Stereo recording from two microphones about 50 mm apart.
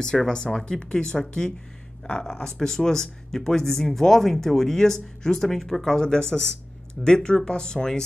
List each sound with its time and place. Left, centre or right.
0.0 s speech: centre
2.3 s speech: centre